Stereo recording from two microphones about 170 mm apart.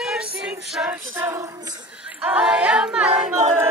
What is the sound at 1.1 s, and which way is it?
Child singing, 15° right (ahead or behind).